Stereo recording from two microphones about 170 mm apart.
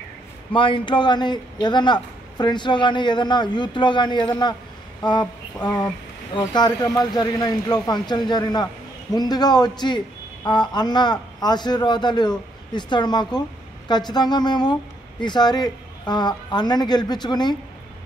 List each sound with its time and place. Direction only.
0.5 s a man's voice: 30° left (ahead or behind)
5.0 s female singing: 25° left (ahead or behind)
6.3 s a man's voice: 25° left (ahead or behind)